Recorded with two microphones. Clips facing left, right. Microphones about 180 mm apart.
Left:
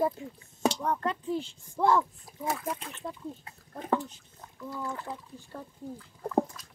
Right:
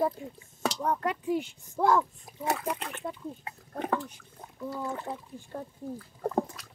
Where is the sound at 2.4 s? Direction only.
70° right (ahead or behind).